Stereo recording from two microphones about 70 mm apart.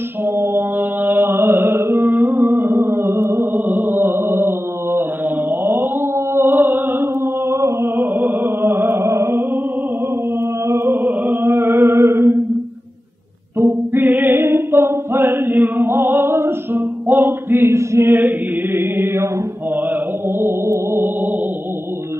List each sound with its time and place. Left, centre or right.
0.2 s mantra: right
10.7 s chant: right
13.6 s music: right
20.3 s music: right